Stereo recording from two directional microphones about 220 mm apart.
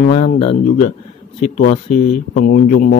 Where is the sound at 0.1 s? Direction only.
25° left (ahead or behind).